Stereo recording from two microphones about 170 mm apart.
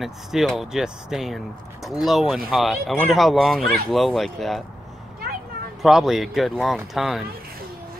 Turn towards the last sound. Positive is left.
turn(degrees=0)  # may be behind; listen again after turning